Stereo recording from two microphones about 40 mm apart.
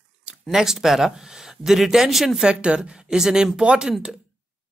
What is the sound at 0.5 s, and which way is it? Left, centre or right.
Speech, centre.